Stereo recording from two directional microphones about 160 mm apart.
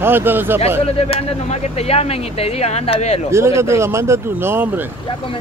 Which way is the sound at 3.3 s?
15° right (ahead or behind).